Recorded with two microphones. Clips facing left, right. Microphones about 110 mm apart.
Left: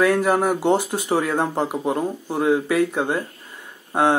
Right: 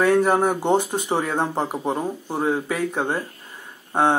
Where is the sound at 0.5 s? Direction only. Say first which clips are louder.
Left 1 dB; 5° left (ahead or behind).